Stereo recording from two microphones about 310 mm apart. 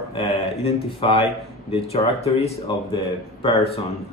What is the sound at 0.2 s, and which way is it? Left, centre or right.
Speech, centre.